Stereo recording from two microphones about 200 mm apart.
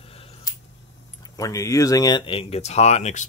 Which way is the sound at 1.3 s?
15° left (ahead or behind).